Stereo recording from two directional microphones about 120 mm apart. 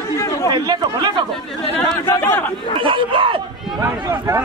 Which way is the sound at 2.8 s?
45° right (ahead or behind).